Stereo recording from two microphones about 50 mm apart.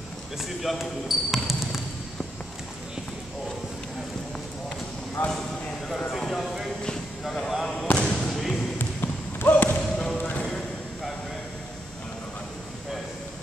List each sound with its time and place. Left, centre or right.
0.4 s speech: centre
5.2 s speech: left
6.1 s a sound: centre
7.2 s basketball bounce: centre
8.0 s basketball bounce: centre
8.3 s basketball bounce: centre
8.7 s basketball bounce: left
9.5 s a sound: left
9.8 s basketball bounce: centre